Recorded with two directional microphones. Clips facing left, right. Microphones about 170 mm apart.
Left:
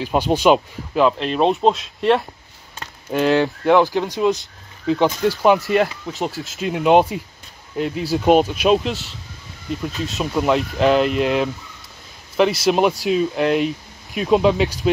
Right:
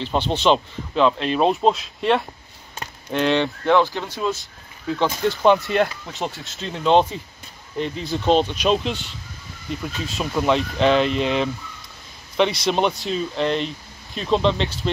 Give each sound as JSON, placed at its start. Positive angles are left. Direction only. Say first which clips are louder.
{"t": 0.0, "sound": "speech", "louder": "left 4 dB", "side_deg": 10}
{"t": 5.4, "sound": "speech", "louder": "left 1 dB", "side_deg": 5}
{"t": 6.7, "sound": "speech", "louder": "left 3 dB", "side_deg": 10}